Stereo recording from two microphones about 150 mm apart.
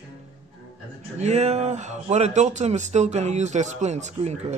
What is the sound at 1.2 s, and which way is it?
Speech, 50° right (ahead or behind).